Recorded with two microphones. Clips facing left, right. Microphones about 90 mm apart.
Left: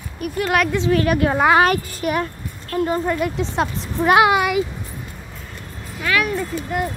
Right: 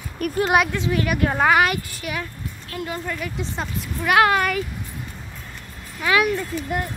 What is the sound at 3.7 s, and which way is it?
Speech, 30° left (ahead or behind).